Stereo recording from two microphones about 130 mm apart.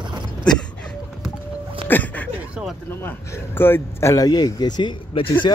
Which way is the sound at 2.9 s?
15° left (ahead or behind).